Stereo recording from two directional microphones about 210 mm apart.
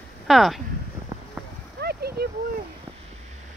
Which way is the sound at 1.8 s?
50° right (ahead or behind).